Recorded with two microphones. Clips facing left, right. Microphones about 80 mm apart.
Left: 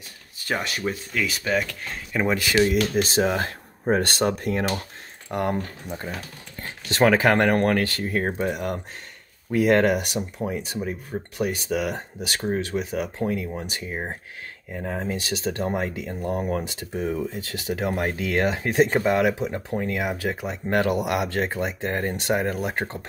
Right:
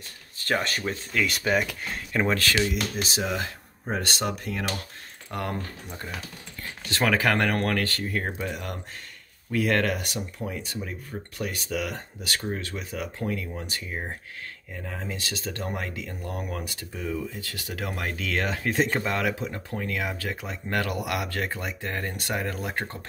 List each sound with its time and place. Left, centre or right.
0.4 s speech: centre
2.2 s speech: centre
2.6 s speech: left
5.3 s speech: left
8.3 s speech: left